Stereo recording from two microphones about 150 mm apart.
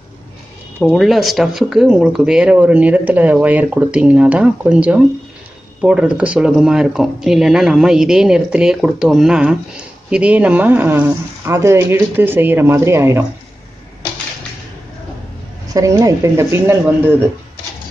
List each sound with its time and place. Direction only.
0.7 s speech: 5° right (ahead or behind)
15.7 s a woman's voice: 20° right (ahead or behind)